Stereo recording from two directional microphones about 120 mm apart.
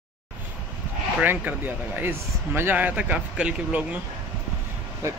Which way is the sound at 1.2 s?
15° right (ahead or behind).